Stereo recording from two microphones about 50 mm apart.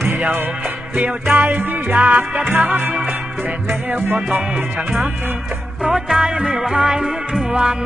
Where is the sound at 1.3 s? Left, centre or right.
Right.